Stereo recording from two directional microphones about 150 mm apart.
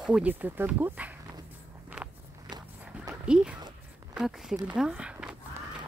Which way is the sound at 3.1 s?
5° right (ahead or behind).